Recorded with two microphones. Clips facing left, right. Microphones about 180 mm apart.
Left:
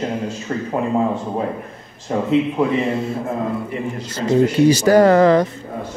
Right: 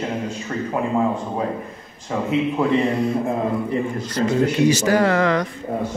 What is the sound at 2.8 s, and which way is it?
Speech, centre (ahead or behind).